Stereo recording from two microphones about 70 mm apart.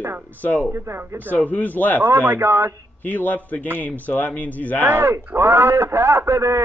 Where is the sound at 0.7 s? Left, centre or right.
Right.